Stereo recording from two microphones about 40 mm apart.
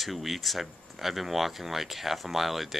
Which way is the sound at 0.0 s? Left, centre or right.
Centre.